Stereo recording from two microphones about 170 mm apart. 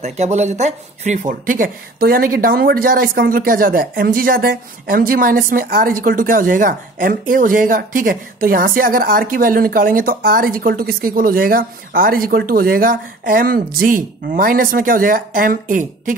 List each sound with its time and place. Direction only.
0.0 s speech: 40° right (ahead or behind)